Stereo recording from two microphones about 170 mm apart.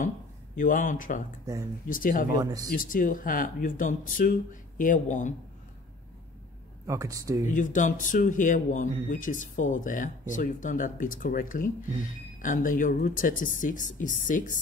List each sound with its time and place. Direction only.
0.6 s speech: 50° left (ahead or behind)
1.4 s speech: 20° right (ahead or behind)
1.9 s speech: 55° left (ahead or behind)
2.3 s speech: 20° right (ahead or behind)
2.7 s speech: 55° left (ahead or behind)
6.9 s speech: 20° right (ahead or behind)
7.4 s speech: 50° left (ahead or behind)